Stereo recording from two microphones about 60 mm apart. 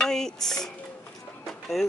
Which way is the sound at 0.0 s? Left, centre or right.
Centre.